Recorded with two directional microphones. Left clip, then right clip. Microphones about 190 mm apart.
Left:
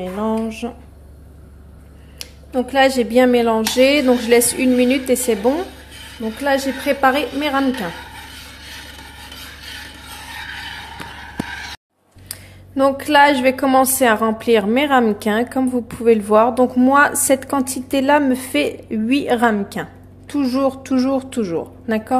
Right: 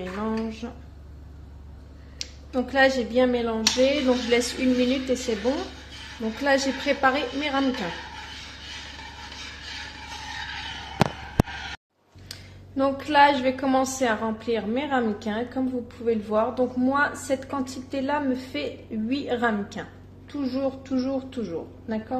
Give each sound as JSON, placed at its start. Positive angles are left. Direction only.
{"t": 0.1, "sound": "a woman's voice", "side_deg": 20}
{"t": 2.1, "sound": "a woman's voice", "side_deg": 15}
{"t": 6.4, "sound": "a woman's voice", "side_deg": 10}
{"t": 12.3, "sound": "a woman's voice", "side_deg": 25}